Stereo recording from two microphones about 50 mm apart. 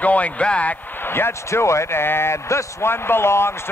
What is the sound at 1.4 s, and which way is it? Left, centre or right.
Speech, left.